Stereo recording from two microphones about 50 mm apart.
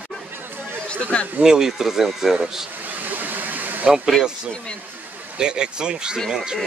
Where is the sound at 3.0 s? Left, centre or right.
Right.